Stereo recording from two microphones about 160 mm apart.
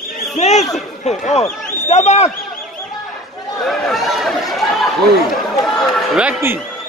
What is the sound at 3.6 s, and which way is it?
Chatter, centre (ahead or behind).